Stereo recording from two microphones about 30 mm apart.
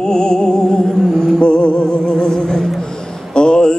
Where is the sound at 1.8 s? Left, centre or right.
Left.